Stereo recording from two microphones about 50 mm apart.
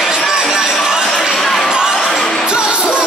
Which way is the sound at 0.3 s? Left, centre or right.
Centre.